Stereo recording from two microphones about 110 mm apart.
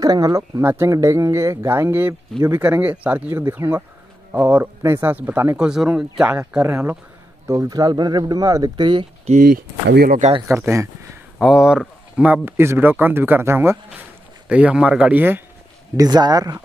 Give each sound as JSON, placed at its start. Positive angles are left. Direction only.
{"t": 0.0, "sound": "speech", "side_deg": -35}
{"t": 5.6, "sound": "speech", "side_deg": -5}
{"t": 6.6, "sound": "speech", "side_deg": -20}
{"t": 9.3, "sound": "speech", "side_deg": -70}
{"t": 10.5, "sound": "speech", "side_deg": -25}
{"t": 11.3, "sound": "speech", "side_deg": -5}
{"t": 14.5, "sound": "speech", "side_deg": -10}
{"t": 16.0, "sound": "speech", "side_deg": -40}